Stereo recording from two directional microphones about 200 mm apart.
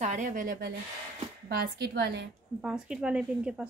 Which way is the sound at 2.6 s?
5° right (ahead or behind).